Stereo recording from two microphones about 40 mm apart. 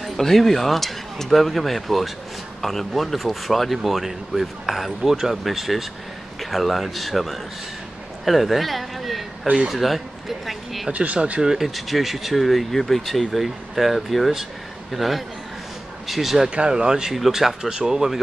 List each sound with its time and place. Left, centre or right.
0.0 s speech: centre
5.0 s speech: centre
10.9 s speech: right
11.4 s speech: centre
16.4 s speech: right; by 17.6 s centre
17.6 s speech: centre